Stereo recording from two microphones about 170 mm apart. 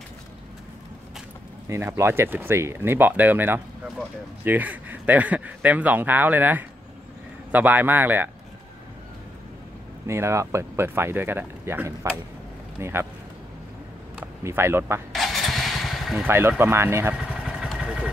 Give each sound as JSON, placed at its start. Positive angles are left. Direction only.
{"t": 1.7, "sound": "speech", "side_deg": -15}
{"t": 10.0, "sound": "speech", "side_deg": -15}
{"t": 14.4, "sound": "speech", "side_deg": -15}
{"t": 15.1, "sound": "vehicle", "side_deg": 0}
{"t": 16.3, "sound": "speech", "side_deg": -15}